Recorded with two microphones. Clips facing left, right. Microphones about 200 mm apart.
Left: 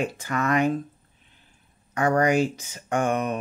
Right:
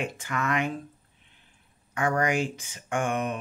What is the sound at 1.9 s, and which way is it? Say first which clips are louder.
Speech: left 5 dB; 40° left (ahead or behind).